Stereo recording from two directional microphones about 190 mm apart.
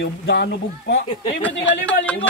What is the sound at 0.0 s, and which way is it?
A man's voice, 60° left (ahead or behind).